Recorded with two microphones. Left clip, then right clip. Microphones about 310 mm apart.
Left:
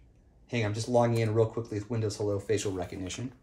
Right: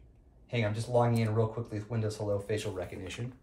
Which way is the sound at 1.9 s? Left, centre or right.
Left.